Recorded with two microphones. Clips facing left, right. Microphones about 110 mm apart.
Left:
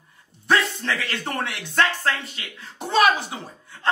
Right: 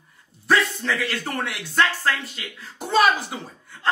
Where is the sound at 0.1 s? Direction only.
Centre (ahead or behind).